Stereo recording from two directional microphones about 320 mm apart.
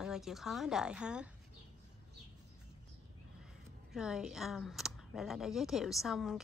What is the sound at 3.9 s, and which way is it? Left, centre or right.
Speech, centre.